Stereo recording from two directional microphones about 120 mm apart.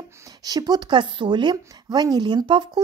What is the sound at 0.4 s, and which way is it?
Speech, 35° right (ahead or behind).